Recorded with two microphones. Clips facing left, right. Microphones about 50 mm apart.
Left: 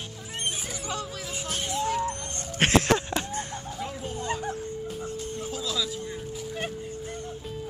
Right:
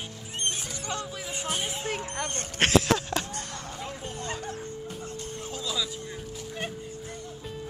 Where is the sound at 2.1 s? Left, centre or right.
Right.